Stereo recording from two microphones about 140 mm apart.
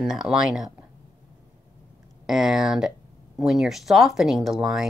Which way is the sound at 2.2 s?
5° right (ahead or behind).